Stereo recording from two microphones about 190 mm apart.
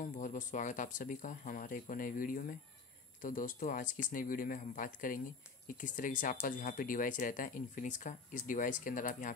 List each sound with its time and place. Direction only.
0.0 s speech: 40° left (ahead or behind)